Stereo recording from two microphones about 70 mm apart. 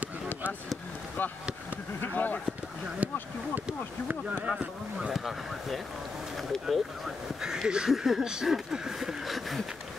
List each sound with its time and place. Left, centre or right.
2.0 s speech: left
3.0 s speech: right
4.6 s speech: centre
5.1 s a sound: centre
7.4 s speech: centre
7.9 s a sound: centre